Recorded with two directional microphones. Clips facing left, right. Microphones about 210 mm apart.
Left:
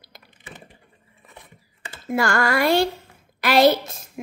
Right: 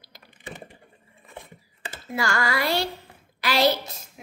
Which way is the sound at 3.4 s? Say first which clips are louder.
Left 6 dB; 50° left (ahead or behind).